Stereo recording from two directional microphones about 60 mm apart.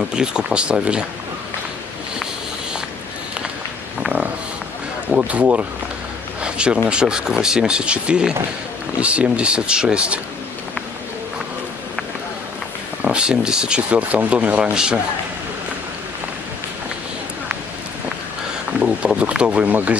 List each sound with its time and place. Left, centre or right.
0.1 s speech: centre
5.1 s speech: right
13.0 s speech: centre
19.1 s speech: right